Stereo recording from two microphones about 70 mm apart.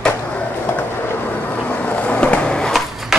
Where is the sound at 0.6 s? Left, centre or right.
Left; by 2.7 s centre.